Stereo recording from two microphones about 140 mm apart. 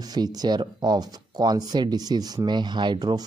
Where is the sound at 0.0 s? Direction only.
30° right (ahead or behind).